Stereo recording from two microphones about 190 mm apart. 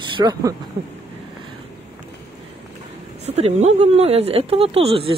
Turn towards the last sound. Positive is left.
turn(degrees=-30)  # may be behind; listen again after turning